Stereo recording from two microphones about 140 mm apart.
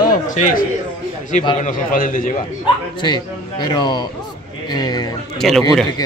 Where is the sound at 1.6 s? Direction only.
75° left (ahead or behind).